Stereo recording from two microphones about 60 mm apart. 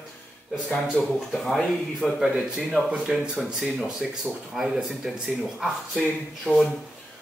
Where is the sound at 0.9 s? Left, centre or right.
Centre.